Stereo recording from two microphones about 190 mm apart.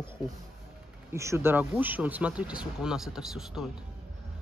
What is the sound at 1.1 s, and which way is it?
Speech, 15° right (ahead or behind).